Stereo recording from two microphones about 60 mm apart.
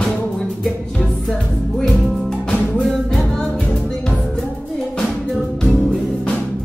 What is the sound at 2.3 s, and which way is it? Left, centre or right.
Music, centre.